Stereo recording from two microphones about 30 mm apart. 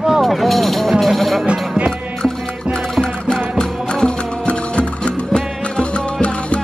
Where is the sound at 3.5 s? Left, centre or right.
Left.